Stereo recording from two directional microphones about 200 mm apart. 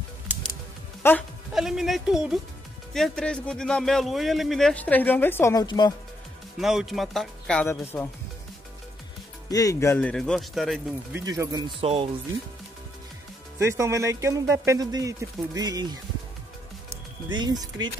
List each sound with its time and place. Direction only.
1.0 s speech: 10° left (ahead or behind)
1.5 s speech: centre (ahead or behind); by 5.9 s 20° left (ahead or behind)
6.6 s speech: centre (ahead or behind)
9.5 s speech: 15° left (ahead or behind); by 10.8 s centre (ahead or behind)
11.1 s speech: 15° right (ahead or behind)
11.8 s speech: 30° right (ahead or behind)
13.6 s speech: 15° right (ahead or behind)
17.3 s speech: 20° right (ahead or behind)